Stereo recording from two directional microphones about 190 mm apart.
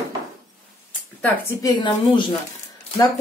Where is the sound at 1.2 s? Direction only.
15° left (ahead or behind).